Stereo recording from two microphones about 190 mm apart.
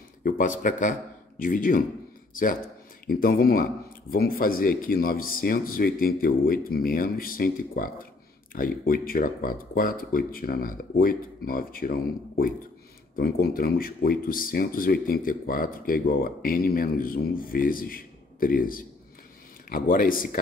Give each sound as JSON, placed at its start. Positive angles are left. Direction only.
{"t": 0.2, "sound": "speech", "side_deg": 45}